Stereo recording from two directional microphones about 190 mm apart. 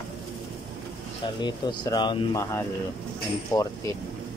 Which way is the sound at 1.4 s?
20° left (ahead or behind).